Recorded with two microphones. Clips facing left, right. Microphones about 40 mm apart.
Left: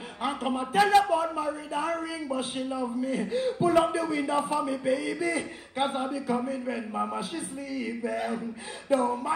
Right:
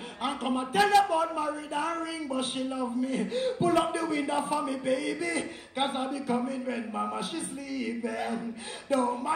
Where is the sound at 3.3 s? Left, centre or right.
Right.